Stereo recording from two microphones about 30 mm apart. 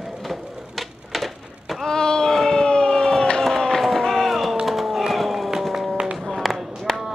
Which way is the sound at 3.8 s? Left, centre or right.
Centre.